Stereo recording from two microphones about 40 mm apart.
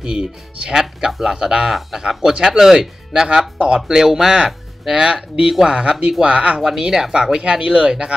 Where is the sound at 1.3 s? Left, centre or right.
Centre.